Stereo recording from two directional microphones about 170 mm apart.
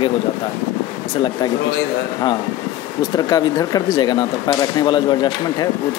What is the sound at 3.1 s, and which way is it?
Speech, 20° left (ahead or behind).